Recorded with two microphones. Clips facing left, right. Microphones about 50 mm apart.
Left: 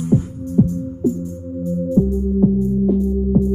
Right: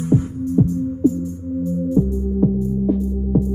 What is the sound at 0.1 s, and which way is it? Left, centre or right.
Music, right.